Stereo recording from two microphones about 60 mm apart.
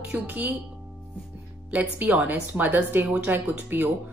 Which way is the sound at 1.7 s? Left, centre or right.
Right.